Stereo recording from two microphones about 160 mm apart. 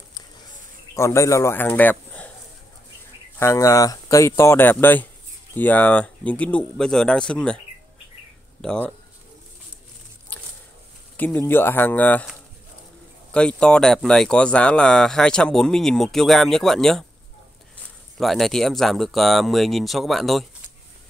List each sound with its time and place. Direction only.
0.9 s speech: 20° left (ahead or behind)
3.3 s speech: 20° left (ahead or behind)
11.1 s speech: 10° left (ahead or behind)
13.3 s speech: 5° left (ahead or behind)
18.1 s speech: centre (ahead or behind)